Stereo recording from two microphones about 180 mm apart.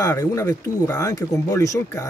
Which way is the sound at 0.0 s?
20° left (ahead or behind).